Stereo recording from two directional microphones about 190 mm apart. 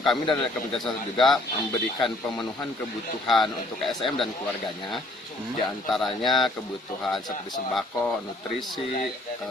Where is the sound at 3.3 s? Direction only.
Centre (ahead or behind).